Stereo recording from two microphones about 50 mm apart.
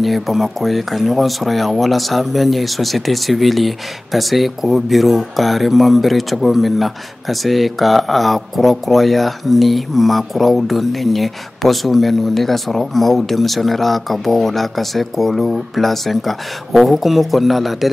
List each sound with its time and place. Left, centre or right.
0.0 s speech: centre